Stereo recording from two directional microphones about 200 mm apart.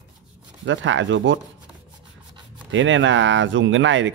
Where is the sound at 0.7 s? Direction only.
70° right (ahead or behind).